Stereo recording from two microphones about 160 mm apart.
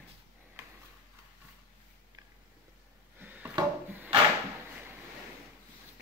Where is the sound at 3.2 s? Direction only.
10° right (ahead or behind).